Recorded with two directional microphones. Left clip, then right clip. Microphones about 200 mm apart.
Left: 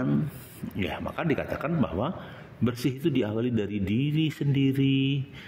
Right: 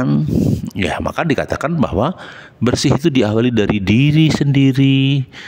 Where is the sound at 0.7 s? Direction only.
40° right (ahead or behind).